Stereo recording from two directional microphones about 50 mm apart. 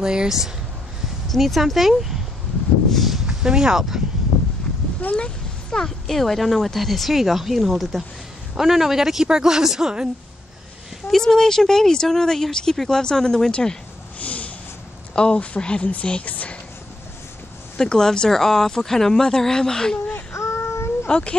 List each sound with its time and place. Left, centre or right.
0.0 s speech: centre
1.3 s speech: centre
2.9 s a sound: centre
3.3 s speech: centre
5.1 s a sound: centre
5.9 s speech: centre
11.1 s speech: centre
14.2 s snort: left
15.1 s speech: centre
17.7 s speech: centre
20.3 s child singing: left
21.1 s speech: left